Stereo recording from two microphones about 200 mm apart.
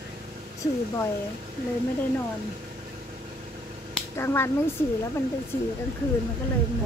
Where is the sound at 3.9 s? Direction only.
10° left (ahead or behind).